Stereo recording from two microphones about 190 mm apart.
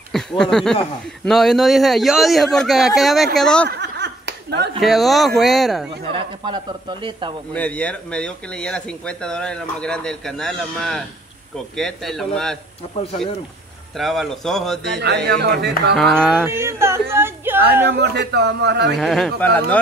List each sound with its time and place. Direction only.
0.4 s speech: 5° left (ahead or behind)
3.8 s clapping: 65° right (ahead or behind)
4.7 s speech: centre (ahead or behind)
6.0 s a man's voice: 25° right (ahead or behind)
7.5 s speech: 5° left (ahead or behind)
13.9 s speech: centre (ahead or behind)
15.0 s a man's voice: 60° right (ahead or behind)
16.0 s speech: centre (ahead or behind)
16.4 s speech: 15° right (ahead or behind)
17.8 s a man's voice: 60° right (ahead or behind)
18.9 s speech: centre (ahead or behind)